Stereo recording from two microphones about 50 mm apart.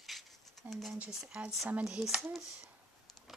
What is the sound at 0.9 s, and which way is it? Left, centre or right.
Speech, right.